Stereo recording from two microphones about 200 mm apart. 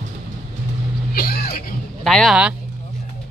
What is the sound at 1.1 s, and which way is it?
Speech, 50° left (ahead or behind).